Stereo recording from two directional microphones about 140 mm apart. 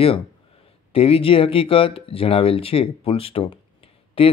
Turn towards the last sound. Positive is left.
turn(degrees=40)  # may be behind; listen again after turning